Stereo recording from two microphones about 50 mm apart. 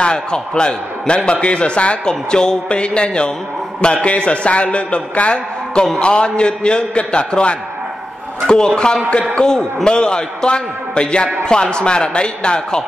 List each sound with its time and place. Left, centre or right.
0.0 s a man's voice: centre